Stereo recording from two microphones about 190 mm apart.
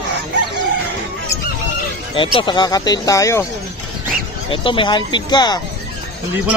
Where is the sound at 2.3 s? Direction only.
25° left (ahead or behind).